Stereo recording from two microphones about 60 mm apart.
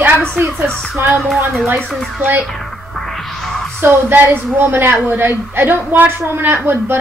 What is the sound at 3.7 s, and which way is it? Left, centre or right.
A woman's voice, right.